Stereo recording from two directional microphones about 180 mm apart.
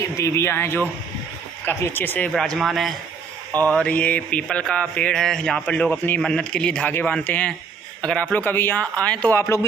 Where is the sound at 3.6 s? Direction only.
5° left (ahead or behind).